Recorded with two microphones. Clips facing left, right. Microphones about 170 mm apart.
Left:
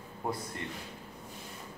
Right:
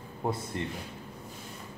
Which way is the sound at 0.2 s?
25° right (ahead or behind).